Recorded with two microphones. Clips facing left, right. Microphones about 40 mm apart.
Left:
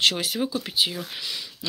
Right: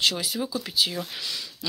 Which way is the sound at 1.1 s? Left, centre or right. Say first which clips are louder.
Even; centre.